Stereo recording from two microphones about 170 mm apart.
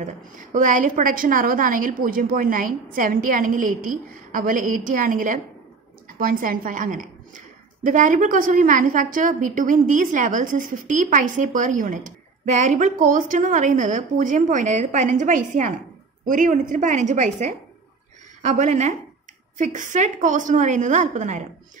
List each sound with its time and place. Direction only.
0.0 s a woman's voice: 50° right (ahead or behind)